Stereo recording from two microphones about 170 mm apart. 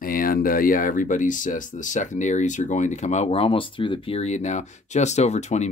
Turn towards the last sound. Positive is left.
turn(degrees=40)  # may be behind; listen again after turning